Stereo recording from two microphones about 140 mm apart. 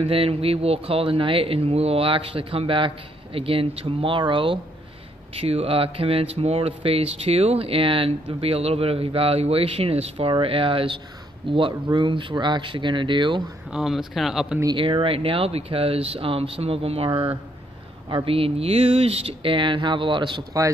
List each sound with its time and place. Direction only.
0.0 s speech: 45° right (ahead or behind)
13.7 s speech: 5° right (ahead or behind)
14.8 s speech: 40° right (ahead or behind)